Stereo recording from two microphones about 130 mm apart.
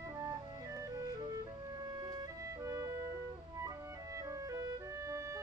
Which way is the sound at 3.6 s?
25° right (ahead or behind).